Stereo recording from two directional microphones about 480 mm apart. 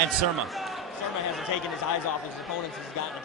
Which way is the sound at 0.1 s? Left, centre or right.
Centre.